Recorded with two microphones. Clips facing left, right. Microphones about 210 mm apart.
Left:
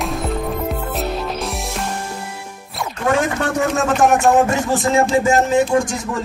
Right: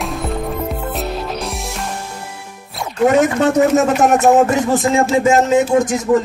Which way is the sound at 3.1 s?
20° right (ahead or behind).